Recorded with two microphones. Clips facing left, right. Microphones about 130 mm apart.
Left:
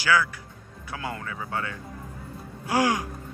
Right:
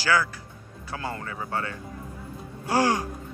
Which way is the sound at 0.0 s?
30° right (ahead or behind).